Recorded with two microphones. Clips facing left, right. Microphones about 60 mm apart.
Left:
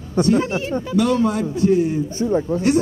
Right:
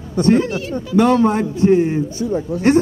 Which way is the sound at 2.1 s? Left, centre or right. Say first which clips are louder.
Left 1 dB; left.